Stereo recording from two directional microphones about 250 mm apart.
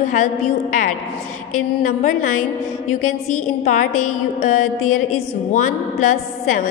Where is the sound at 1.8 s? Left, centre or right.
Left.